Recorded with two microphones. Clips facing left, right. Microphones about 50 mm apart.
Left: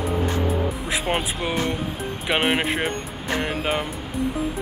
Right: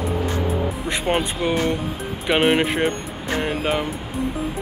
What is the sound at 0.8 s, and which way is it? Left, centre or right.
Speech, centre.